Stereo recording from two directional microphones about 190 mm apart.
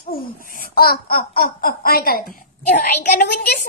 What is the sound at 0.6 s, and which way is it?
Speech, 50° left (ahead or behind).